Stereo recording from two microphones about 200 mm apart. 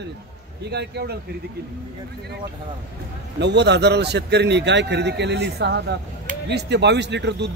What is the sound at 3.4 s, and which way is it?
A man's voice, 60° right (ahead or behind).